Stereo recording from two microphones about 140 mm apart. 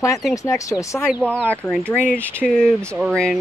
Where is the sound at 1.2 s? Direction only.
10° left (ahead or behind).